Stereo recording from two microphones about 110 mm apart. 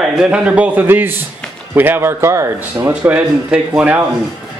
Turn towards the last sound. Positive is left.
turn(degrees=-10)  # may be behind; listen again after turning